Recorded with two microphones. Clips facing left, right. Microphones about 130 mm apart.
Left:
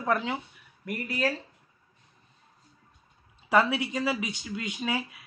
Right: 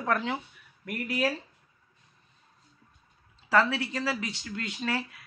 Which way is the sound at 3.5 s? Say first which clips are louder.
Left 1 dB; 15° left (ahead or behind).